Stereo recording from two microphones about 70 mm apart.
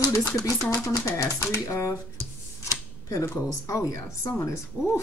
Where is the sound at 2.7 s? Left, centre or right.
Left.